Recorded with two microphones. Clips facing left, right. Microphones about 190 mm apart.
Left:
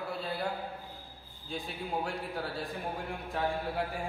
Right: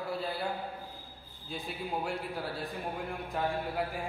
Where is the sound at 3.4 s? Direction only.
Centre (ahead or behind).